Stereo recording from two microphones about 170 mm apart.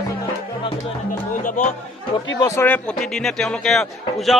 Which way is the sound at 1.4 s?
45° left (ahead or behind).